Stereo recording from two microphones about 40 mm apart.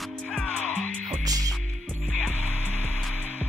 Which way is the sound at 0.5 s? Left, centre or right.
Left.